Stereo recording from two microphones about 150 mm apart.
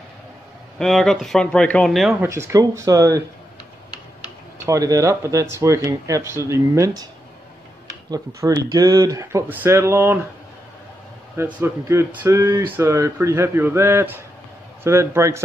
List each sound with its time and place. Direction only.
0.7 s speech: 5° left (ahead or behind)
2.2 s speech: 20° right (ahead or behind)
4.6 s speech: 20° right (ahead or behind)
8.4 s speech: 25° right (ahead or behind)
11.3 s speech: 15° right (ahead or behind)